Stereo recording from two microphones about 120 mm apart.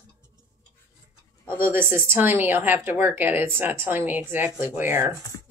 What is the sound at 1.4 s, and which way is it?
Speech, 20° right (ahead or behind).